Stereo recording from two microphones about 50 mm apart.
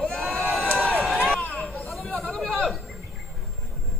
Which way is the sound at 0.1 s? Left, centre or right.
Left.